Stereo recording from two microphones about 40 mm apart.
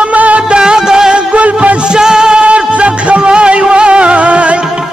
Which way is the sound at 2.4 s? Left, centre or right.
Right.